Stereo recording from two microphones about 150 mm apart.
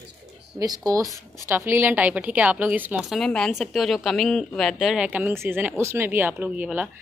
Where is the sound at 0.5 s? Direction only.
25° right (ahead or behind).